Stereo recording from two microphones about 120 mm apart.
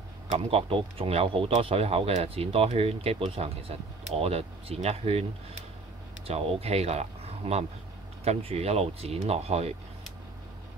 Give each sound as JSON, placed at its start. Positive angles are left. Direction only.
{"t": 0.3, "sound": "speech", "side_deg": -60}
{"t": 6.2, "sound": "speech", "side_deg": -55}